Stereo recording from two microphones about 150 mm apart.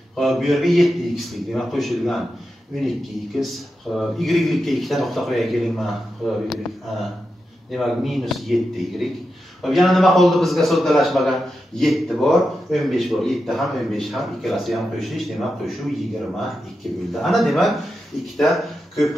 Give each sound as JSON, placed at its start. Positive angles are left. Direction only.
{"t": 0.1, "sound": "speech", "side_deg": 0}
{"t": 3.3, "sound": "speech", "side_deg": 0}